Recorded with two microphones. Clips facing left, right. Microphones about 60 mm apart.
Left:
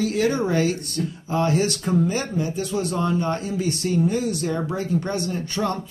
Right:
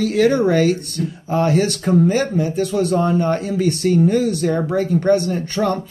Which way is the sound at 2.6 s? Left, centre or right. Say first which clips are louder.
Right 6 dB; right.